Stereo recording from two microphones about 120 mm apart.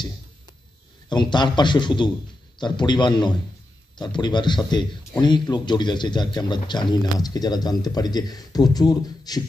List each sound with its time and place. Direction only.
1.0 s a man's voice: 40° left (ahead or behind)